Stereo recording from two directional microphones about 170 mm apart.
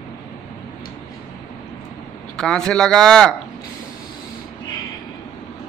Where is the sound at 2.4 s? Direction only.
5° left (ahead or behind).